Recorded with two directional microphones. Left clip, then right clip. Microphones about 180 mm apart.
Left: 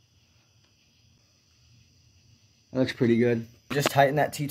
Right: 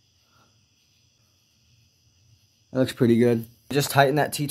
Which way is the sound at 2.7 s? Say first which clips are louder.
Right 3 dB; 15° right (ahead or behind).